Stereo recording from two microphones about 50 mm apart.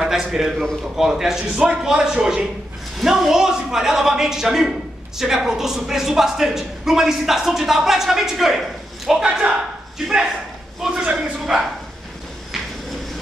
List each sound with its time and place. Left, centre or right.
0.0 s a man's voice: centre
9.2 s speech: centre
10.0 s a man's voice: centre
10.8 s a sound: centre
11.1 s speech: centre